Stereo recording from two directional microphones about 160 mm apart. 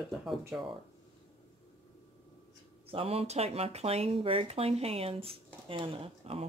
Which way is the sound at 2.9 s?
35° right (ahead or behind).